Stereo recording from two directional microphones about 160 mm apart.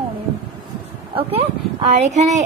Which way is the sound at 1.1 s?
35° right (ahead or behind).